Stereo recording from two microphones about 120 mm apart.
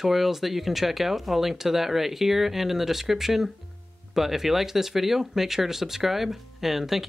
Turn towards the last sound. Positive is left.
turn(degrees=0)  # may be behind; listen again after turning